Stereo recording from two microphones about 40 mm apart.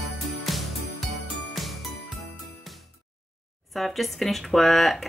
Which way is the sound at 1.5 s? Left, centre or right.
Centre.